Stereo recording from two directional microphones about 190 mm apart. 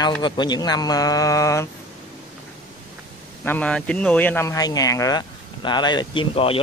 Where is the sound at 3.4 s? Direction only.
10° left (ahead or behind).